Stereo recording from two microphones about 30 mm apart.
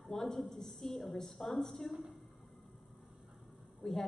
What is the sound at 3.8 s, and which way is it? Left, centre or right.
Speech, centre.